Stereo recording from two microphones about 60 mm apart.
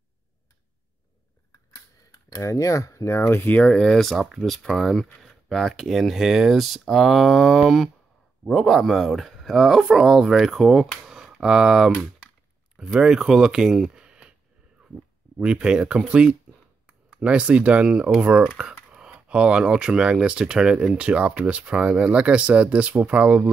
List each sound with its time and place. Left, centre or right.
2.2 s speech: left
3.2 s speech: left
3.7 s speech: centre
4.1 s speech: centre
11.1 s a sound: centre
12.7 s speech: centre
15.3 s speech: centre